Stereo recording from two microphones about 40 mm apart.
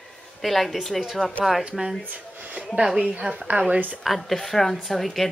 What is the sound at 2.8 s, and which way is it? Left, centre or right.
Speech, centre.